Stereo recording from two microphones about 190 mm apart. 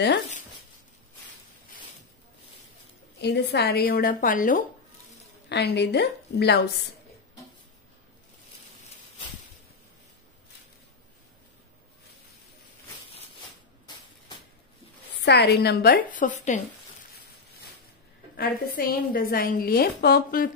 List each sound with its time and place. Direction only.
3.2 s a woman's voice: 60° left (ahead or behind); by 4.6 s 45° left (ahead or behind)
5.5 s a woman's voice: 65° left (ahead or behind)
15.2 s a woman's voice: 60° left (ahead or behind); by 16.6 s 40° left (ahead or behind)
18.8 s a woman's voice: 50° left (ahead or behind)